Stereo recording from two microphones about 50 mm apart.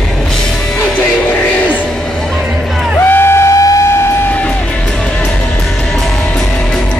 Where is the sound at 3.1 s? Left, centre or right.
Left.